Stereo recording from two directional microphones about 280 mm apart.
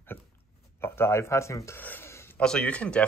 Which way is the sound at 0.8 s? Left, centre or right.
Centre.